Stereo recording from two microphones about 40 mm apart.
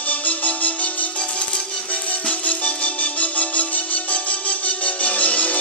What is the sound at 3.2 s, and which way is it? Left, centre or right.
Music, left.